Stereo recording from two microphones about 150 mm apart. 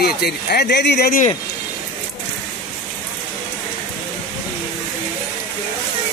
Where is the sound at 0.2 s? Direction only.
90° left.